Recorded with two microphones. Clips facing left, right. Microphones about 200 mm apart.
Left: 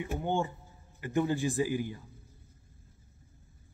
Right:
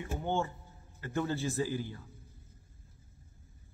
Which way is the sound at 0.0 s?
15° left (ahead or behind).